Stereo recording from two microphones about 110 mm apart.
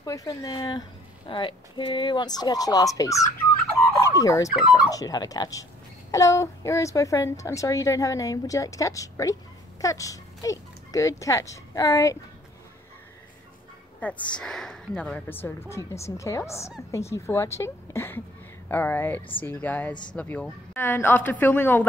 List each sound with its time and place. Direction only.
0.0 s speech: 30° left (ahead or behind)
3.9 s fowl: 30° left (ahead or behind)
4.8 s a woman's voice: 35° left (ahead or behind)
13.9 s a woman's voice: 10° left (ahead or behind)
19.9 s speech: 45° left (ahead or behind)
20.2 s a woman's voice: 15° left (ahead or behind)